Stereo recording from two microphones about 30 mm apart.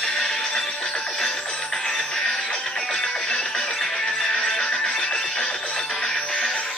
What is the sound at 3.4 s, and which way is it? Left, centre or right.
Music, left.